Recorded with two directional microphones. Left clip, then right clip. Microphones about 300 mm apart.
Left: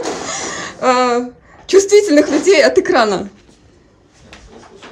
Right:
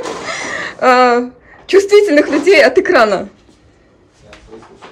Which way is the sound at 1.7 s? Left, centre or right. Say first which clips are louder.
Right 1 dB; centre.